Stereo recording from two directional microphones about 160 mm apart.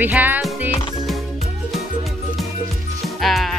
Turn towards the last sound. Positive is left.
turn(degrees=0)  # may be behind; listen again after turning